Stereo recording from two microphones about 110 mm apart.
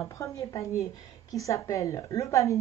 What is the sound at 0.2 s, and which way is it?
Speech, 30° left (ahead or behind).